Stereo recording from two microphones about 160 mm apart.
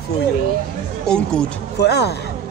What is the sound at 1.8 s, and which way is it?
Speech, 90° left.